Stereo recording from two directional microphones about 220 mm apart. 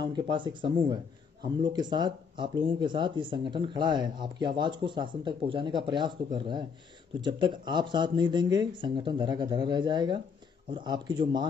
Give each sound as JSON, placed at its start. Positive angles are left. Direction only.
{"t": 0.0, "sound": "speech", "side_deg": -20}
{"t": 7.2, "sound": "speech", "side_deg": -20}